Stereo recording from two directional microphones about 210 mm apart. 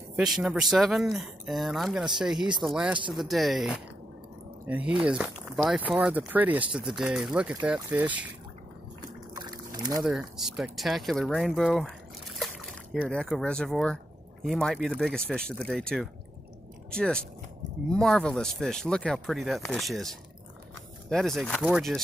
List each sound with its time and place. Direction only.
0.1 s speech: 5° right (ahead or behind)
9.3 s boat: 20° right (ahead or behind)
10.0 s speech: centre (ahead or behind)